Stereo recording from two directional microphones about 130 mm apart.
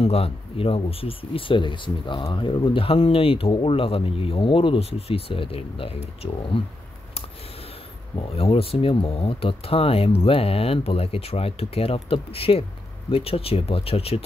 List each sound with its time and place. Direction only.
0.0 s speech: 50° left (ahead or behind)
8.2 s speech: 45° left (ahead or behind)